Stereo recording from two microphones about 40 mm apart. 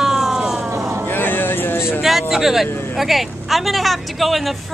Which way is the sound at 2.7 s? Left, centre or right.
Left.